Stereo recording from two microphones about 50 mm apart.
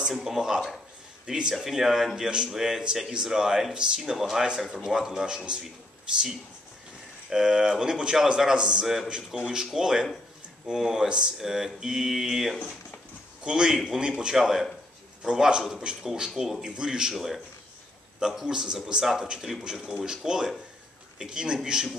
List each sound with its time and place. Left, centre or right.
0.1 s speech: centre
7.2 s speech: centre
11.3 s a man's voice: centre